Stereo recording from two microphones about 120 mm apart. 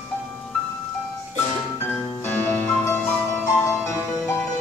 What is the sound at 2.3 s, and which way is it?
Music, 15° left (ahead or behind).